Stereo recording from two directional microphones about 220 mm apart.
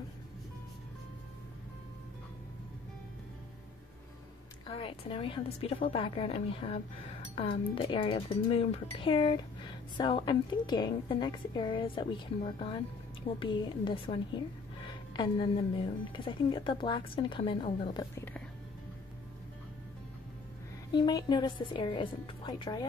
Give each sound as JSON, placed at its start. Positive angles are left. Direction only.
{"t": 4.6, "sound": "a woman's voice", "side_deg": 25}
{"t": 17.9, "sound": "speech", "side_deg": 10}
{"t": 20.9, "sound": "a woman's voice", "side_deg": 20}